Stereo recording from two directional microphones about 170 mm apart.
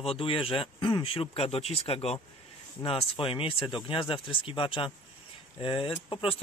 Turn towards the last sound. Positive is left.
turn(degrees=30)  # may be behind; listen again after turning